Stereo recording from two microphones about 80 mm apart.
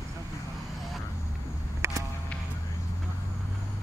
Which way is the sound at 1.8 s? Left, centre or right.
Right.